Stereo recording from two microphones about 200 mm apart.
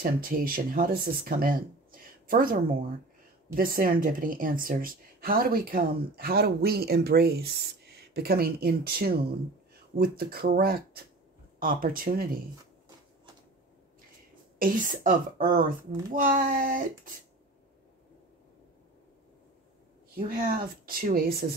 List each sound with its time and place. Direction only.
0.0 s a woman's voice: 45° right (ahead or behind)
14.6 s a woman's voice: 45° right (ahead or behind)
20.2 s a woman's voice: 45° right (ahead or behind)